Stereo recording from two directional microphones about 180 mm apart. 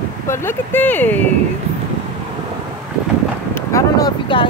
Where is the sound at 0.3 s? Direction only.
15° left (ahead or behind).